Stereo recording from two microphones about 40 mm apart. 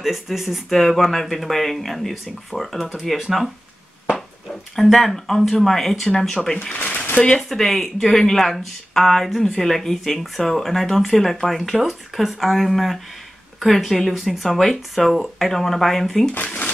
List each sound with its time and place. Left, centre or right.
0.0 s speech: centre
4.7 s speech: centre
6.7 s a sound: left
7.3 s speech: centre